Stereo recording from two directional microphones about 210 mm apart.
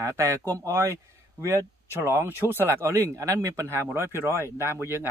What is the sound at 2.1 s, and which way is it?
Speech, 10° right (ahead or behind).